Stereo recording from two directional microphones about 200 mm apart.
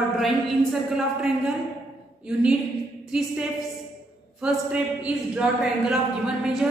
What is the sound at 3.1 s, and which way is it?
Speech, 5° right (ahead or behind).